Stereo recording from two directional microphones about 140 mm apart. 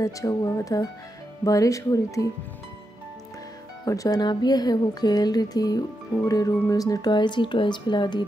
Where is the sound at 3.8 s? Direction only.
25° left (ahead or behind).